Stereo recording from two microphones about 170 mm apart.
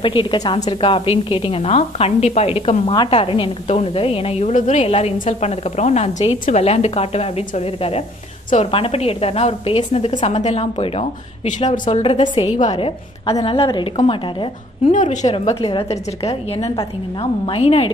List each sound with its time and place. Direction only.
0.0 s a woman's voice: 30° left (ahead or behind); by 12.0 s 45° left (ahead or behind)
12.0 s a woman's voice: 35° left (ahead or behind)
14.9 s a woman's voice: 40° left (ahead or behind)